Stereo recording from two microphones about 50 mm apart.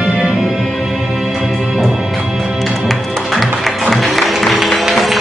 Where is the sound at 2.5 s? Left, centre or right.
Centre.